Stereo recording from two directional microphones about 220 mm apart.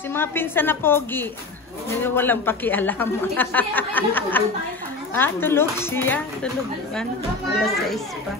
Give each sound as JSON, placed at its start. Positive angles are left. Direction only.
{"t": 0.1, "sound": "speech", "side_deg": 10}
{"t": 7.6, "sound": "a child's voice", "side_deg": 0}